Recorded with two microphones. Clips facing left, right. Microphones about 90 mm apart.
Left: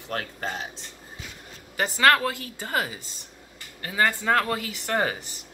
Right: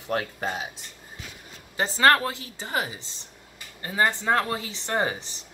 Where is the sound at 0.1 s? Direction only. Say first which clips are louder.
Right 3 dB; 10° right (ahead or behind).